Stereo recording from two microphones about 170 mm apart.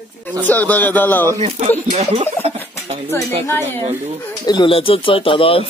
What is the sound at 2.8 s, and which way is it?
Dishes, 40° right (ahead or behind).